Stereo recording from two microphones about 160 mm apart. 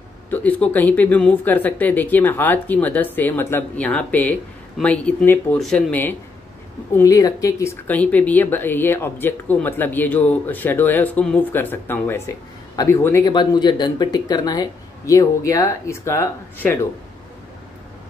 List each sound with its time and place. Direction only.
0.3 s speech: 10° left (ahead or behind)
7.0 s speech: 20° left (ahead or behind)
13.3 s speech: 25° left (ahead or behind)